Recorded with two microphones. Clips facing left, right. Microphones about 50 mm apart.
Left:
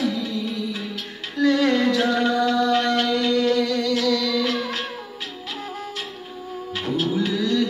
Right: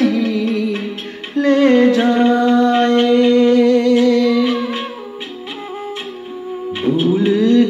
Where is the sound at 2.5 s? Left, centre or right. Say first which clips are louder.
Right 7 dB; right.